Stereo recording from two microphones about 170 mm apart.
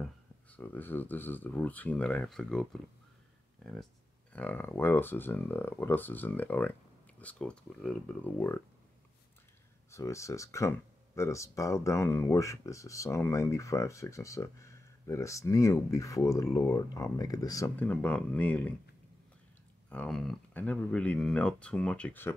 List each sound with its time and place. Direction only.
0.0 s speech: 10° left (ahead or behind)
4.3 s speech: 10° left (ahead or behind)
9.8 s speech: 15° left (ahead or behind)
19.9 s speech: 5° left (ahead or behind)